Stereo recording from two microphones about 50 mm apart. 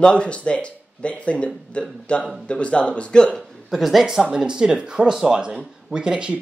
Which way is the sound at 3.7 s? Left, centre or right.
Centre.